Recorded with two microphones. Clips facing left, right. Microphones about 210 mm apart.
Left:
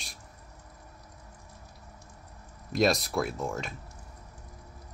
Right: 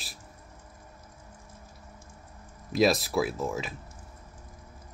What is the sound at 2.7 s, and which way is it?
Speech, centre (ahead or behind).